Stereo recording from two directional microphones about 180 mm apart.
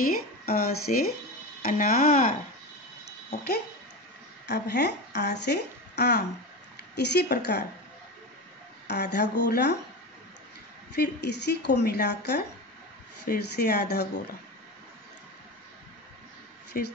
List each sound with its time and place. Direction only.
0.5 s speech: 55° left (ahead or behind)
3.3 s speech: 60° left (ahead or behind)
8.8 s speech: 70° left (ahead or behind)
11.0 s speech: 70° left (ahead or behind)